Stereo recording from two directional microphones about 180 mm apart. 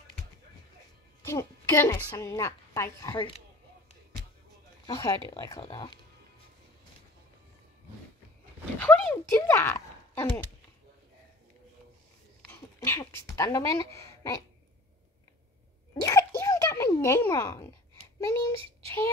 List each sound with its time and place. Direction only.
1.2 s a woman's voice: 15° left (ahead or behind)
4.8 s speech: 20° left (ahead or behind)
8.7 s speech: 10° left (ahead or behind)
12.4 s speech: 15° left (ahead or behind)
15.9 s a sound: 20° left (ahead or behind)
18.2 s a woman's voice: 15° left (ahead or behind)